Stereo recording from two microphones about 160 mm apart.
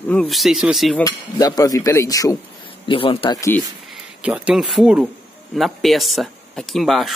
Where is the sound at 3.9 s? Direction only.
5° right (ahead or behind).